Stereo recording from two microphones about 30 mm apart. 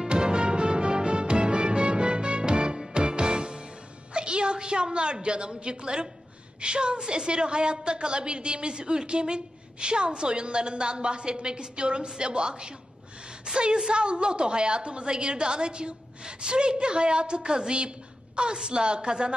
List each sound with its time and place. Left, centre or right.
0.1 s music: right
4.1 s a woman's voice: right